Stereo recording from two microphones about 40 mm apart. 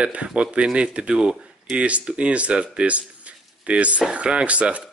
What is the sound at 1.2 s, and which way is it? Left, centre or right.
Speech, centre.